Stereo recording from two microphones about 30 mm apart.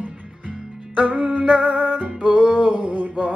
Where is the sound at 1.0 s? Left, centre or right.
Right.